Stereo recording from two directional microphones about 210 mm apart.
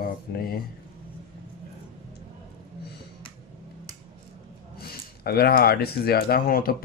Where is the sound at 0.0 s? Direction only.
45° left (ahead or behind).